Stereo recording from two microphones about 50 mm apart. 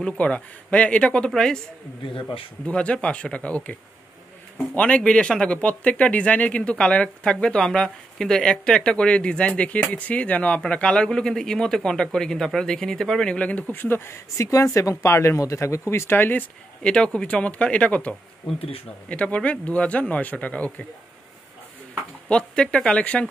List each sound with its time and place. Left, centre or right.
0.0 s speech: left
2.6 s speech: left
4.7 s speech: left
13.4 s speech: left
13.7 s speech: left
16.8 s speech: centre
22.3 s speech: centre